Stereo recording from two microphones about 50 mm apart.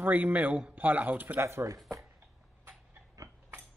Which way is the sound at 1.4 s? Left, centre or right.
Right.